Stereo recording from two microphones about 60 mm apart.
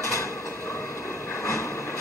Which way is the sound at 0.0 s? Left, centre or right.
Left.